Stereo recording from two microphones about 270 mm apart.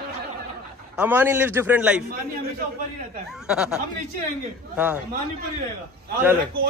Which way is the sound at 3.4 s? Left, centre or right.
Centre.